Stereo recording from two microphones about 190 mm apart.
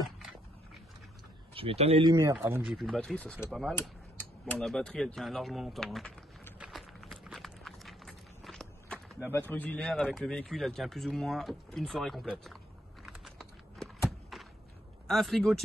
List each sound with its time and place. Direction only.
0.0 s a sound: centre (ahead or behind)
1.5 s speech: 30° right (ahead or behind); by 2.8 s 10° right (ahead or behind)
2.8 s speech: centre (ahead or behind)
6.6 s walk: centre (ahead or behind)
9.2 s speech: 10° left (ahead or behind)
13.0 s typing: centre (ahead or behind)
14.3 s a sound: centre (ahead or behind)
15.0 s speech: centre (ahead or behind)